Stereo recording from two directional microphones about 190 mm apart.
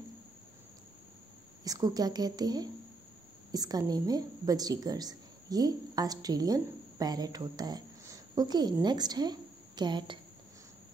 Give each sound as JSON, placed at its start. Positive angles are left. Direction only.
{"t": 1.6, "sound": "a woman's voice", "side_deg": -20}